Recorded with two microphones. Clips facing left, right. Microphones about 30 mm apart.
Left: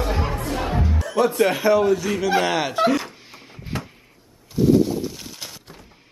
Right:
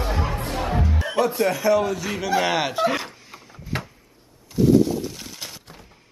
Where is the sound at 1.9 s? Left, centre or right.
Centre.